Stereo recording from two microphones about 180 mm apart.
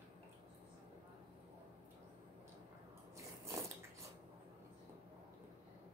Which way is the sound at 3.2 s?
15° right (ahead or behind).